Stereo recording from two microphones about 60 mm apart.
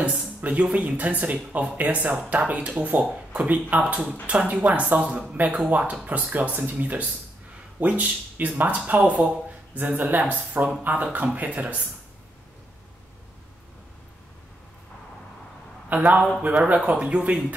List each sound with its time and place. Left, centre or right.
0.0 s speech: right
15.9 s a man's voice: right